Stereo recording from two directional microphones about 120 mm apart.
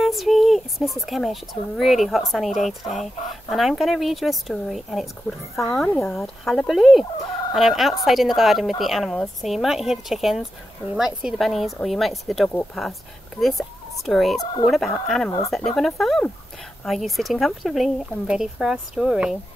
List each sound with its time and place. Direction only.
0.0 s speech: centre (ahead or behind)
14.4 s speech: 35° left (ahead or behind)
14.7 s speech: centre (ahead or behind)